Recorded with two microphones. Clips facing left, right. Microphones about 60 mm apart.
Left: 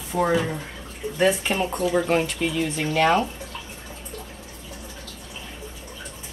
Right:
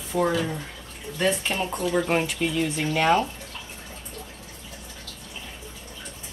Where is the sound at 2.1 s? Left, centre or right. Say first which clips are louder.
Left 2 dB; centre.